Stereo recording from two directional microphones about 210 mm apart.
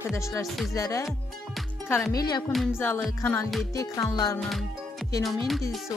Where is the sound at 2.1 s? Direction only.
20° left (ahead or behind).